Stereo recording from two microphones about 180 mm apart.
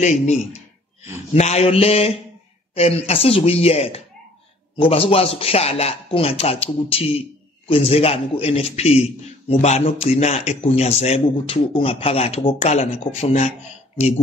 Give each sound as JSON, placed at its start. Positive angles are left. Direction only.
{"t": 1.3, "sound": "a man's voice", "side_deg": 35}